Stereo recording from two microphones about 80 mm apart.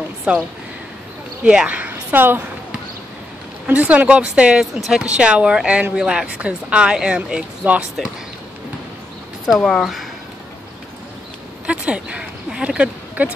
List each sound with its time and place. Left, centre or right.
0.3 s speech: centre
3.6 s speech: centre
4.7 s speech: centre
5.0 s speech: centre
9.7 s speech: centre
11.6 s speech: centre